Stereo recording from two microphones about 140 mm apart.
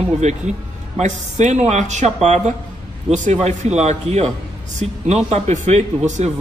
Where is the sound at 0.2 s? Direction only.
55° right (ahead or behind).